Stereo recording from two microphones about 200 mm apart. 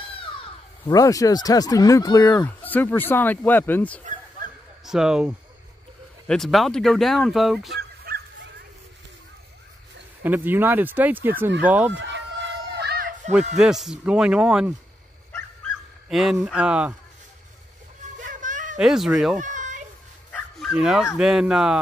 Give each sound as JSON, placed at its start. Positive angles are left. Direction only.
{"t": 0.2, "sound": "speech", "side_deg": 25}
{"t": 4.8, "sound": "speech", "side_deg": 0}
{"t": 7.7, "sound": "dog", "side_deg": -50}
{"t": 10.2, "sound": "speech", "side_deg": -10}
{"t": 11.9, "sound": "a sound", "side_deg": -65}
{"t": 13.6, "sound": "speech", "side_deg": 0}
{"t": 16.1, "sound": "speech", "side_deg": 0}
{"t": 18.2, "sound": "a sound", "side_deg": -40}
{"t": 18.8, "sound": "speech", "side_deg": -5}
{"t": 19.4, "sound": "children playing", "side_deg": -40}
{"t": 20.2, "sound": "bow-wow", "side_deg": 5}
{"t": 21.2, "sound": "speech", "side_deg": -5}